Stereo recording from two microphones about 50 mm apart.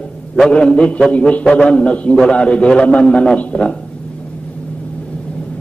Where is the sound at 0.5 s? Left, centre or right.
Centre.